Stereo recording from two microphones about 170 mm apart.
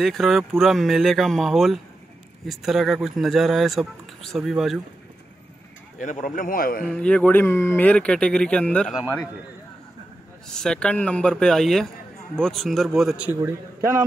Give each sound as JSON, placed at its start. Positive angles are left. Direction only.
{"t": 0.0, "sound": "speech", "side_deg": 0}
{"t": 5.9, "sound": "a man's voice", "side_deg": 50}
{"t": 6.9, "sound": "speech", "side_deg": 5}
{"t": 10.5, "sound": "speech", "side_deg": 5}